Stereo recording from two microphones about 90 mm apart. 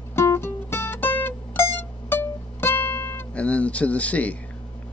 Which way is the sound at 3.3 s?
15° left (ahead or behind).